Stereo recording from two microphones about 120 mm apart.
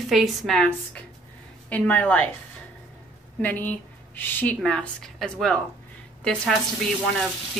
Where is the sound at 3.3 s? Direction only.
15° left (ahead or behind).